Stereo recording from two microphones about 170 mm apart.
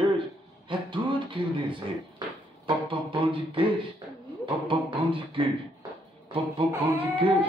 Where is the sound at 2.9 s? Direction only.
30° right (ahead or behind).